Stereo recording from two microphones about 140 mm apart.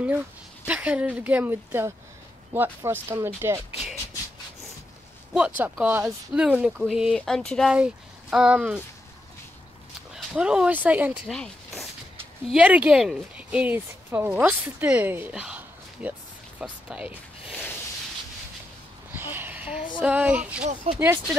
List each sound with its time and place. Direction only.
0.7 s speech: 10° right (ahead or behind)
5.3 s speech: 5° right (ahead or behind)
7.2 s a sound: 5° left (ahead or behind)
7.7 s speech: 5° right (ahead or behind)
10.1 s speech: 5° right (ahead or behind)
11.2 s a sound: centre (ahead or behind)
12.4 s speech: 5° right (ahead or behind)
19.1 s a sound: 15° right (ahead or behind)
20.0 s speech: 10° right (ahead or behind)
20.9 s speech: 45° right (ahead or behind)